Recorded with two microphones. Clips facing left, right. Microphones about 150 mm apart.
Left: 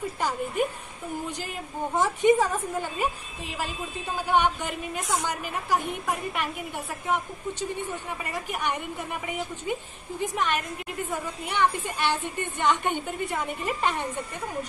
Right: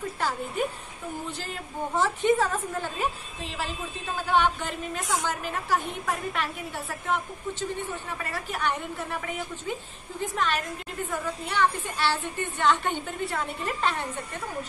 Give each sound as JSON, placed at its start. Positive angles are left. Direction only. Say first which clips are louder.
{"t": 1.4, "sound": "a woman's voice", "louder": "left 1 dB", "side_deg": 10}
{"t": 5.0, "sound": "a woman's voice", "louder": "even", "side_deg": 0}
{"t": 5.7, "sound": "a woman's voice", "louder": "left 1 dB", "side_deg": 15}
{"t": 8.2, "sound": "a woman's voice", "louder": "right 2 dB", "side_deg": 15}